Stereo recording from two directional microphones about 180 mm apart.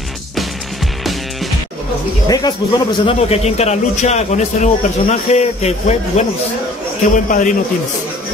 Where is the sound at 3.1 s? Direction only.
35° left (ahead or behind).